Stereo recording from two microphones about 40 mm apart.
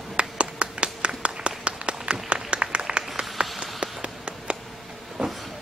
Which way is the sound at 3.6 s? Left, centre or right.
Right.